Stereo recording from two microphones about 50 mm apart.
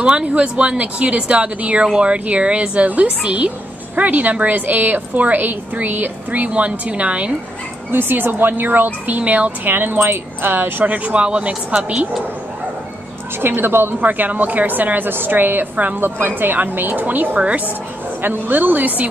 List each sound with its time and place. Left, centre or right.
0.0 s a woman's voice: right
7.9 s a woman's voice: right
9.8 s a woman's voice: right
13.4 s a woman's voice: right
14.0 s a woman's voice: right